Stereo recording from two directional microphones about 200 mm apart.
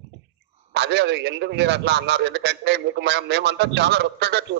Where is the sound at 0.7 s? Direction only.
60° right (ahead or behind).